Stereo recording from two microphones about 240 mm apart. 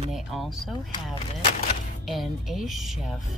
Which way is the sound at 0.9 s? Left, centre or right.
Centre.